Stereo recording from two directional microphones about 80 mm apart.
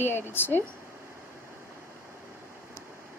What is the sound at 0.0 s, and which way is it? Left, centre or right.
Speech, left.